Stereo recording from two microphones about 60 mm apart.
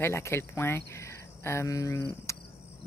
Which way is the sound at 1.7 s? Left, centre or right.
Left.